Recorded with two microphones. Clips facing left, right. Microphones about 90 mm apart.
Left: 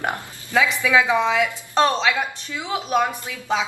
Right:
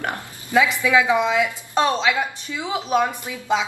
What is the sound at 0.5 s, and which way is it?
A woman's voice, 15° right (ahead or behind).